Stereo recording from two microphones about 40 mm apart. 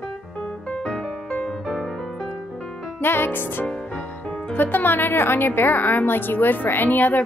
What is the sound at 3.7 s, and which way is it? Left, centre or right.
Music, centre.